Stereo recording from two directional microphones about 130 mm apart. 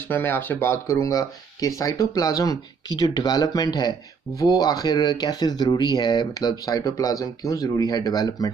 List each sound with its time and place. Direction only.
0.1 s speech: 15° left (ahead or behind)